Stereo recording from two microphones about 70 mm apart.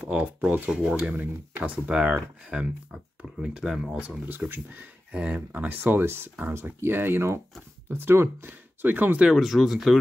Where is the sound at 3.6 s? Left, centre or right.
Centre.